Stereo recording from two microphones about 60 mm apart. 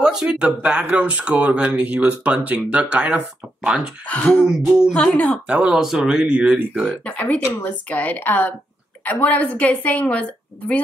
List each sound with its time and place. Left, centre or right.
0.0 s a sound: centre
0.4 s speech: right
4.1 s a woman's voice: left
4.5 s speech: centre
4.9 s a woman's voice: left
5.5 s speech: centre
5.8 s speech: centre
6.9 s a woman's voice: left